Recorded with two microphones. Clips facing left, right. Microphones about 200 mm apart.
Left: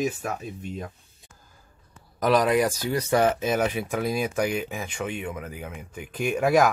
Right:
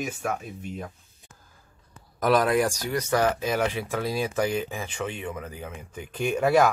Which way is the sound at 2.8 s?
25° left (ahead or behind).